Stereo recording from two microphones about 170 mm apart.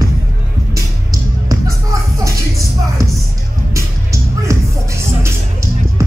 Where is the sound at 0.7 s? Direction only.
20° right (ahead or behind).